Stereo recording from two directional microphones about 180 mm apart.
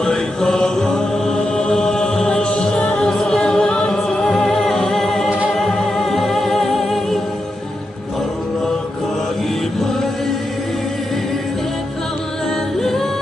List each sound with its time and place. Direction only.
0.0 s mantra: 5° left (ahead or behind)
5.5 s music: 5° left (ahead or behind)